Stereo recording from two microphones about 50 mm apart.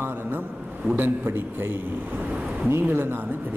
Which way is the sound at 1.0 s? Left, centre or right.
Right.